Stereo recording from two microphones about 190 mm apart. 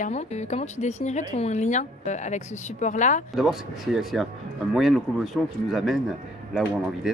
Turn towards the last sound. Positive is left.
turn(degrees=-5)  # may be behind; listen again after turning